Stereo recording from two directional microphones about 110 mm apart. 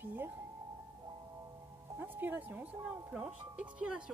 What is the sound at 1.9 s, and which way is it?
Speech, 20° right (ahead or behind).